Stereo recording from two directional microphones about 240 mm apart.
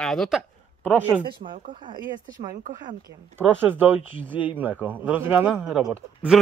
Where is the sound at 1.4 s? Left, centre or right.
Right.